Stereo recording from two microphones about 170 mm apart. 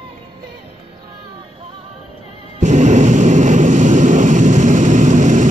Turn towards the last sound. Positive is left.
turn(degrees=-45)  # may be behind; listen again after turning